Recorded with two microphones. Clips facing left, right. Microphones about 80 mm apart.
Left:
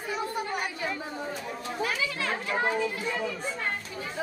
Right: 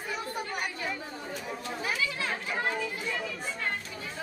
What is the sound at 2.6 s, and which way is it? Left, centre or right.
Chatter, centre.